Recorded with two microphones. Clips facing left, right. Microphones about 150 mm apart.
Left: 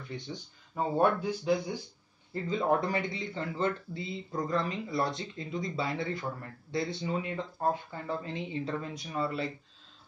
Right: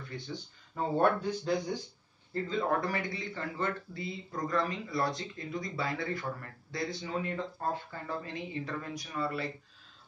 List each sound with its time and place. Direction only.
0.7 s speech: 10° left (ahead or behind)
2.4 s speech: 20° left (ahead or behind)